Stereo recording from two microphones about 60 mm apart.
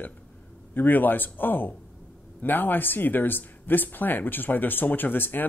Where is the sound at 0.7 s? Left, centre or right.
Left.